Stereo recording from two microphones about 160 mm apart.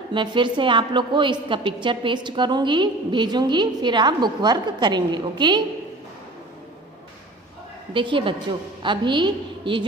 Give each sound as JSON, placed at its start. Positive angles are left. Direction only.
{"t": 0.1, "sound": "a woman's voice", "side_deg": -30}
{"t": 7.9, "sound": "a woman's voice", "side_deg": -30}